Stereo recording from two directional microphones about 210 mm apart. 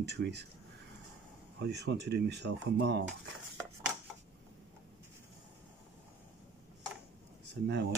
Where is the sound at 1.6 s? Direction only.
55° right (ahead or behind).